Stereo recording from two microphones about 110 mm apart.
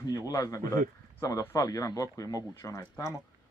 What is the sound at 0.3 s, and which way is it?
Speech, 30° left (ahead or behind).